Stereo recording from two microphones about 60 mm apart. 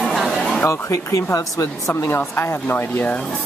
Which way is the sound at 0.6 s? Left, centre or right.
Left.